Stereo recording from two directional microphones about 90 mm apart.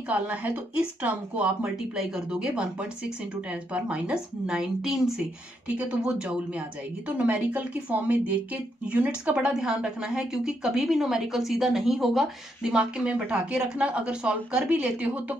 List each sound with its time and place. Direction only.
0.1 s speech: 15° right (ahead or behind)